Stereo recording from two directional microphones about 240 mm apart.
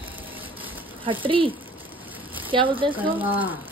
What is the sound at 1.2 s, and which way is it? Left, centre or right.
Speech, right.